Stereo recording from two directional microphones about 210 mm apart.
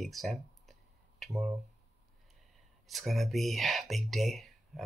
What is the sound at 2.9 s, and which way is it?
Speech, centre (ahead or behind).